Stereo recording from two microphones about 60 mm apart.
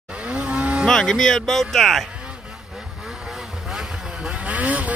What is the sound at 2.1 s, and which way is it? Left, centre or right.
Vehicle, centre.